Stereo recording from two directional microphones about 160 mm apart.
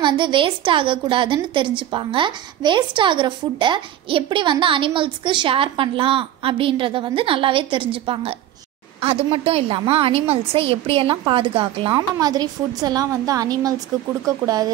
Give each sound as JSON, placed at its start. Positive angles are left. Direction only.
{"t": 0.0, "sound": "a woman's voice", "side_deg": -30}